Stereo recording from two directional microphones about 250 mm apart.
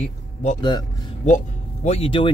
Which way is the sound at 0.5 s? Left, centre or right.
Centre.